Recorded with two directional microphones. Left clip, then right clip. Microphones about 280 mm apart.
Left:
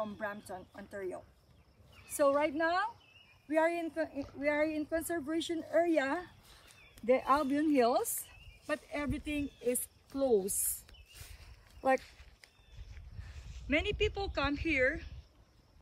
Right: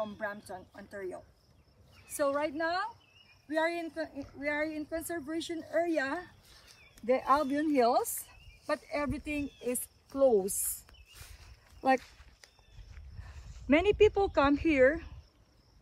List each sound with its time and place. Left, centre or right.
0.0 s speech: centre
7.1 s speech: centre
9.5 s speech: centre
10.4 s speech: right
10.9 s a sound: centre
13.7 s speech: centre